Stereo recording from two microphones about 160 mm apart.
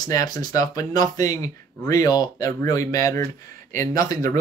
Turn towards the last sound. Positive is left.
turn(degrees=20)  # may be behind; listen again after turning